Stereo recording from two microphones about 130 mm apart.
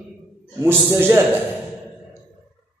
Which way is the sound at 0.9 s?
15° right (ahead or behind).